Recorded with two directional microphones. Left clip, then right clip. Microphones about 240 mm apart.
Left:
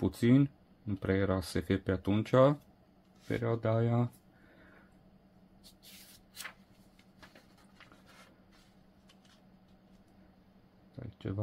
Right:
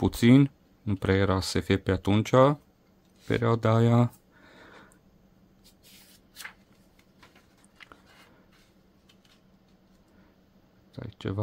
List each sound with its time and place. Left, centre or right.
0.0 s speech: right
3.3 s speech: right
4.6 s a sound: right
11.0 s speech: right